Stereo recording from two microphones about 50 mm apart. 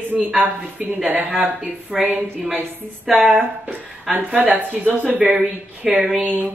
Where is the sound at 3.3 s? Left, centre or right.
Centre.